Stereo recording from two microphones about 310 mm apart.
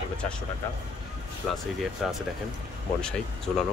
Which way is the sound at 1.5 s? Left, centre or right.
Centre.